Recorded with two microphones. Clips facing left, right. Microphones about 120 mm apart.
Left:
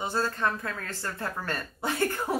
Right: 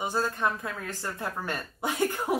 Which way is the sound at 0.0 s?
15° right (ahead or behind).